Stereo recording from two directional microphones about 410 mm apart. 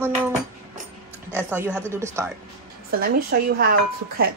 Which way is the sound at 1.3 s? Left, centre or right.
Centre.